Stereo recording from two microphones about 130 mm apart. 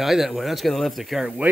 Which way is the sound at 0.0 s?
Centre (ahead or behind).